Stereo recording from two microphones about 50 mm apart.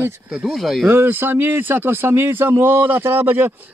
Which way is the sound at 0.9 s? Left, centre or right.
Right.